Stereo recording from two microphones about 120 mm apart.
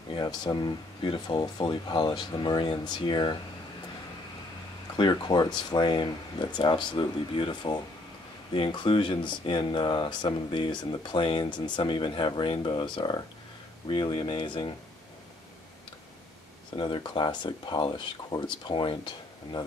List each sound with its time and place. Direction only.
0.1 s speech: 35° left (ahead or behind)
4.9 s speech: 40° left (ahead or behind)
16.7 s speech: 45° left (ahead or behind)